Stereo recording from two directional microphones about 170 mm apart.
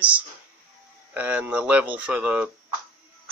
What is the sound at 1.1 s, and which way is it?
Speech, 10° right (ahead or behind).